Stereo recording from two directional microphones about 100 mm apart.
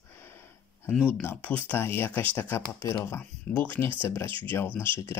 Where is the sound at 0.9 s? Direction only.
10° left (ahead or behind).